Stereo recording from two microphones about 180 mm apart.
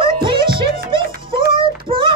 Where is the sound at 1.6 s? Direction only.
30° right (ahead or behind).